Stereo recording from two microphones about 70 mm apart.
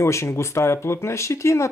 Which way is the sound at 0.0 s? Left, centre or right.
Left.